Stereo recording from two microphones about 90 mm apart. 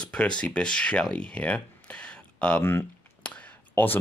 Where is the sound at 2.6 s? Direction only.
25° left (ahead or behind).